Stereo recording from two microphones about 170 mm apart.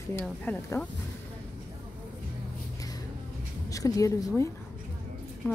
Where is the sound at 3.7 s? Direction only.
20° left (ahead or behind).